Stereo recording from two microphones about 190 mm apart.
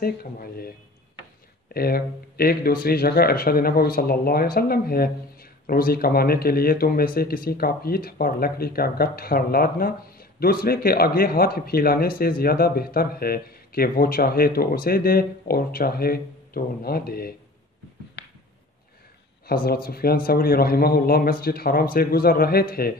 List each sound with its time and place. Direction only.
0.0 s speech: 50° left (ahead or behind)
1.7 s speech: 50° left (ahead or behind)
19.4 s speech: 55° left (ahead or behind)